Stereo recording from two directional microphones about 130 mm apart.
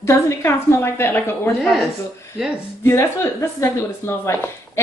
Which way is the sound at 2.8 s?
20° left (ahead or behind).